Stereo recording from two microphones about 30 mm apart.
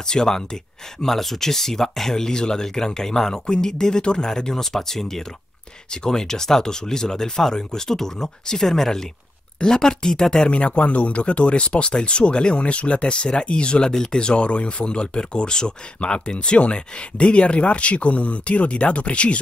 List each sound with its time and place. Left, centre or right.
0.0 s speech: left
1.1 s speech: centre
10.5 s speech: left
16.0 s speech: left